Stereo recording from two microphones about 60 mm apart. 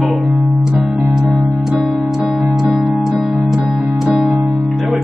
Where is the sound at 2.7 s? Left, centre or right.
Centre.